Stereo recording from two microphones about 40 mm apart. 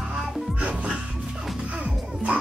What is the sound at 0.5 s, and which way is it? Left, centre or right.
Music, right.